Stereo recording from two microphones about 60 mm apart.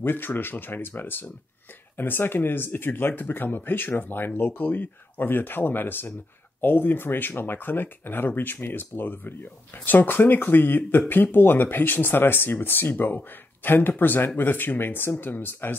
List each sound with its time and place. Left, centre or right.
0.0 s speech: left